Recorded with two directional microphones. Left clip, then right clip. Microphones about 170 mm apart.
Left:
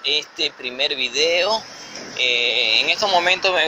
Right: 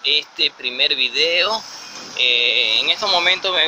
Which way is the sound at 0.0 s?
15° right (ahead or behind).